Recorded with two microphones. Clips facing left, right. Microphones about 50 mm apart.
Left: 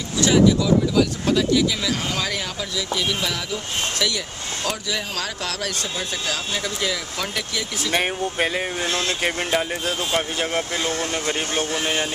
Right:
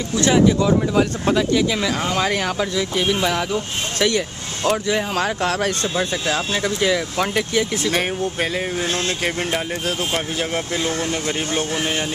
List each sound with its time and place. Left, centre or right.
0.6 s speech: right
7.9 s speech: centre